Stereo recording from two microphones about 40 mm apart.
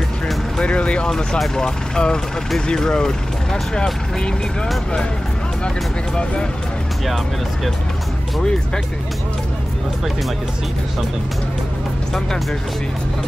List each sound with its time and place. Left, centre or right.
0.6 s speech: left